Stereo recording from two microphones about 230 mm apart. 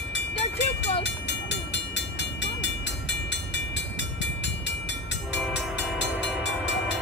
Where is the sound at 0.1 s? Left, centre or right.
Left.